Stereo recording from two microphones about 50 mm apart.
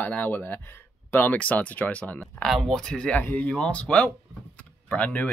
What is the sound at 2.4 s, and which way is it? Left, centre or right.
Speech, centre.